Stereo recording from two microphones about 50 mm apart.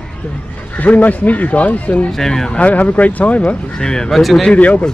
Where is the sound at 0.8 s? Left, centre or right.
Left.